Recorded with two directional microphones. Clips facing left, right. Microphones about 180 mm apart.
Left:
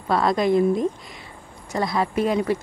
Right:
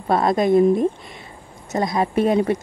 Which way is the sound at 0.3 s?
50° right (ahead or behind).